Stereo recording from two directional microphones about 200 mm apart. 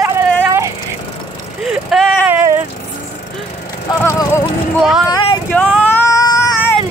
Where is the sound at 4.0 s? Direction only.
15° left (ahead or behind).